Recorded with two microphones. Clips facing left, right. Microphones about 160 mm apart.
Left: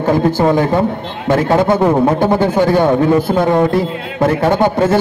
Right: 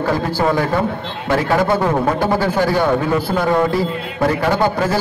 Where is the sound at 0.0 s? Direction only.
20° left (ahead or behind).